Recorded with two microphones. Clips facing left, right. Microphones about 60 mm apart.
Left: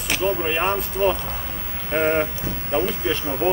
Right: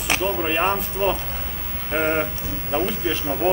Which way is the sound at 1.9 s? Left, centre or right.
Centre.